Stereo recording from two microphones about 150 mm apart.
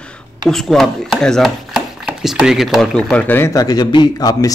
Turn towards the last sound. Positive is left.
turn(degrees=25)  # may be behind; listen again after turning